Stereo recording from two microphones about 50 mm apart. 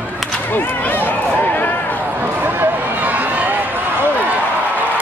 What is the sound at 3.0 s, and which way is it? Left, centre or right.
Run, right.